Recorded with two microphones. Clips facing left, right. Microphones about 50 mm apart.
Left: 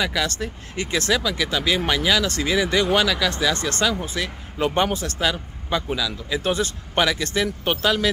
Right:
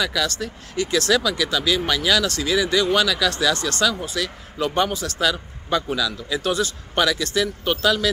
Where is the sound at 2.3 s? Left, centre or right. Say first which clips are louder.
Even; left.